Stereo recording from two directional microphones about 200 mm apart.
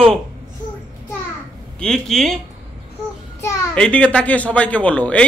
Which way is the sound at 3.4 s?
5° left (ahead or behind).